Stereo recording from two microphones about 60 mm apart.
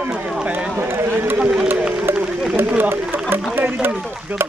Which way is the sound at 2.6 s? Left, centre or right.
Right.